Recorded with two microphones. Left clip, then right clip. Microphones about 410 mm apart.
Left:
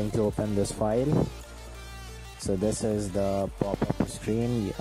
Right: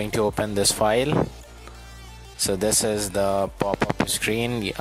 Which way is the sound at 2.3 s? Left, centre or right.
Right.